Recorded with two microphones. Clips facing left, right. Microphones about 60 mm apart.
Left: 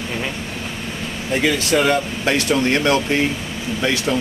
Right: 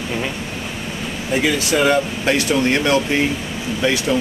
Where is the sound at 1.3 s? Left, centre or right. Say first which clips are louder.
Even; centre.